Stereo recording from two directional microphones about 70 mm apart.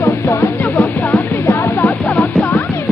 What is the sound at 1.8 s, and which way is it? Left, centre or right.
Music, left.